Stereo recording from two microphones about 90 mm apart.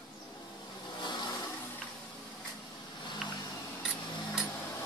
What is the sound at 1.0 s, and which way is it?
Vehicle, 55° left (ahead or behind).